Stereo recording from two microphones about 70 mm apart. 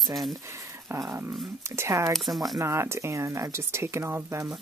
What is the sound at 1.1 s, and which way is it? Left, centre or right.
Speech, right.